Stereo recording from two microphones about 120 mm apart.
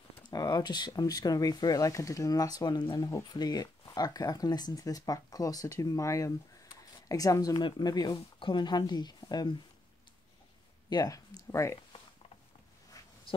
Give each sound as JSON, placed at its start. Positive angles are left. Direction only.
{"t": 0.3, "sound": "speech", "side_deg": 30}
{"t": 10.9, "sound": "speech", "side_deg": 35}